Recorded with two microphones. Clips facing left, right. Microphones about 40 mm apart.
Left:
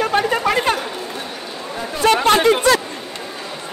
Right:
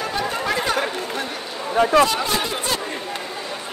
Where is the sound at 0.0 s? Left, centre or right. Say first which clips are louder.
Left 7 dB; left.